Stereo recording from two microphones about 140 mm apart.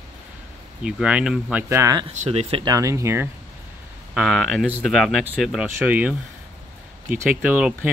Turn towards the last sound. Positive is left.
turn(degrees=-10)  # may be behind; listen again after turning